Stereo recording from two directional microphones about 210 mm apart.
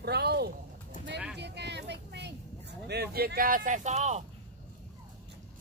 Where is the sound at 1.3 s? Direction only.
55° right (ahead or behind).